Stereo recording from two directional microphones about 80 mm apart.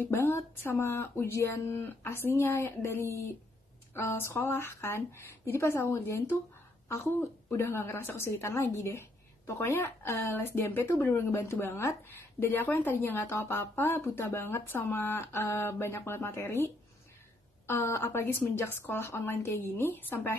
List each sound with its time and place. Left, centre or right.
0.0 s a woman's voice: left
7.4 s a woman's voice: left